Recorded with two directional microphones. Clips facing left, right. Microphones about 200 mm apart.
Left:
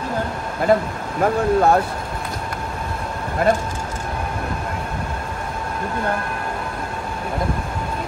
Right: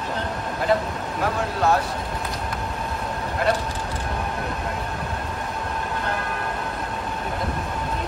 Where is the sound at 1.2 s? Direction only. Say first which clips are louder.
Left 8 dB; 55° left (ahead or behind).